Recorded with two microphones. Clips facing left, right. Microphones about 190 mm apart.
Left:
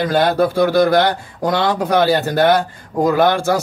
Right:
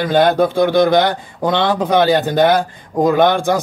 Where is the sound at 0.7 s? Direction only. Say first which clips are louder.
Right 1 dB; 5° left (ahead or behind).